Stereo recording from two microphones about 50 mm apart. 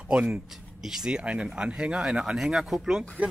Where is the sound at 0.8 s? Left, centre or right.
Centre.